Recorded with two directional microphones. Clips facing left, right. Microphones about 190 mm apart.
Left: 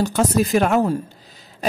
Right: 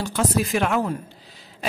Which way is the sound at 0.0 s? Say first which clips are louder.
Left 5 dB; 45° left (ahead or behind).